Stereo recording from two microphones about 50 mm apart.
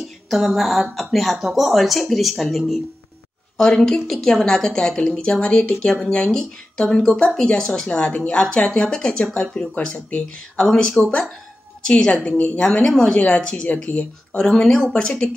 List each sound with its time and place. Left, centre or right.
0.3 s speech: centre
3.5 s a woman's voice: centre; by 12.5 s left
12.5 s a woman's voice: centre